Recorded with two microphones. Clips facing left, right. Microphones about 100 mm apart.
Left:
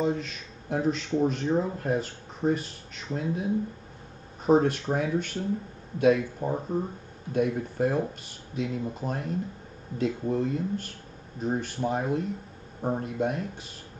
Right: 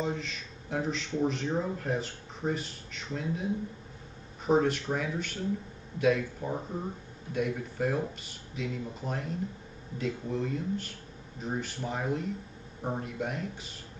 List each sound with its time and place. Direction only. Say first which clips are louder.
0.0 s speech: left 5 dB; 45° left (ahead or behind)
4.5 s speech: left 4 dB; 45° left (ahead or behind)